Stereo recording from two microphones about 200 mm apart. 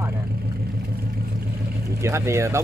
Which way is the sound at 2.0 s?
15° right (ahead or behind).